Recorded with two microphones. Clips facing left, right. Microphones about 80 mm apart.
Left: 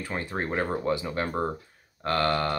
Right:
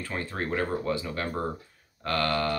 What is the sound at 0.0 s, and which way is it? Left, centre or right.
Speech, left.